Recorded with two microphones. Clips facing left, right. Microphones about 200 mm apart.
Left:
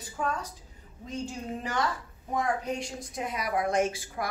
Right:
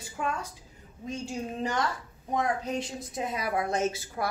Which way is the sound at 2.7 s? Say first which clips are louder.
Right 3 dB; 25° right (ahead or behind).